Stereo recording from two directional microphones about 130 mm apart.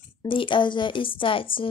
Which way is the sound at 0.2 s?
40° left (ahead or behind).